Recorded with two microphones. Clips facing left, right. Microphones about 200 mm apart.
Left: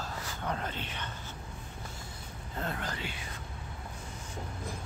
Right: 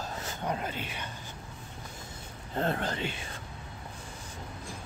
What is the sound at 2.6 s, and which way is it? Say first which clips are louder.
Speech: right 7 dB; 30° right (ahead or behind).